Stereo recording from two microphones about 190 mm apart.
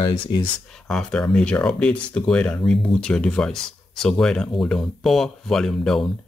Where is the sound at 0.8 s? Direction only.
5° left (ahead or behind).